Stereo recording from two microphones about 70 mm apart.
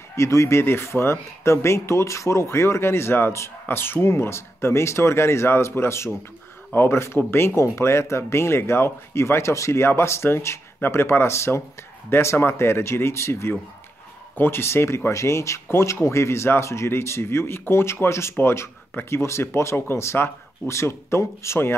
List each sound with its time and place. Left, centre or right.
0.1 s speech: left